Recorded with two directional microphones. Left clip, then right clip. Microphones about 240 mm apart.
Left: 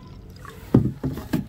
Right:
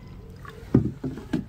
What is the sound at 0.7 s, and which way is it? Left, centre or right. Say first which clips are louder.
Rowboat: left 3 dB; left.